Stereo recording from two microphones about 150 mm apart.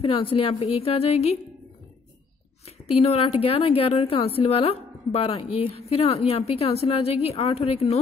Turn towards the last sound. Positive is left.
turn(degrees=40)  # may be behind; listen again after turning